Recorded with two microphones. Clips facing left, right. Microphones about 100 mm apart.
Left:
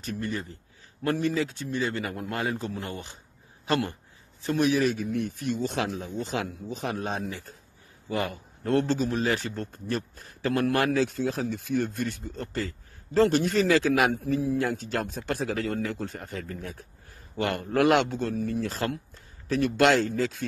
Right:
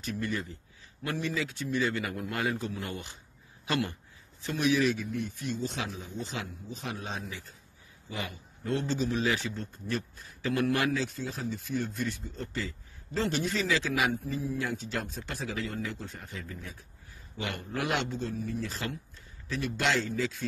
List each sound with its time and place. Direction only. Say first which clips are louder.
0.0 s a man's voice: left 1 dB; 40° left (ahead or behind)
5.1 s a man's voice: left 5 dB; 65° left (ahead or behind); by 10.9 s 50° left (ahead or behind)
10.9 s speech: left 7 dB; 70° left (ahead or behind)
14.6 s speech: left 5 dB; 55° left (ahead or behind)